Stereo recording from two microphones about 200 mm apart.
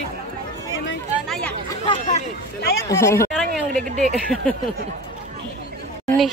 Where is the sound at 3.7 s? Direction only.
40° right (ahead or behind).